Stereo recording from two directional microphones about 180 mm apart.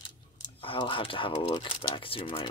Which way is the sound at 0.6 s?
30° left (ahead or behind).